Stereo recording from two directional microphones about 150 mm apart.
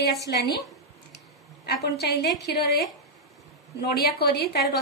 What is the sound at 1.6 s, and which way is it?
Speech, 90° left.